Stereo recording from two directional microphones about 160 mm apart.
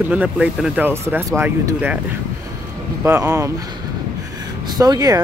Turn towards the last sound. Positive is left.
turn(degrees=-20)  # may be behind; listen again after turning